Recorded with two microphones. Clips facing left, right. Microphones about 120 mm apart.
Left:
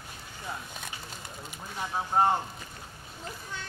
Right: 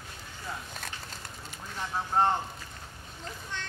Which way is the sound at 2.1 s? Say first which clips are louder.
Left 1 dB; 10° left (ahead or behind).